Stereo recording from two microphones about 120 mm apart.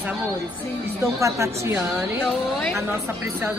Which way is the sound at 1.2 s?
25° right (ahead or behind).